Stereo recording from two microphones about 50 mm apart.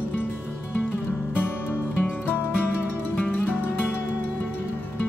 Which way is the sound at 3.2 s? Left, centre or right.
Left.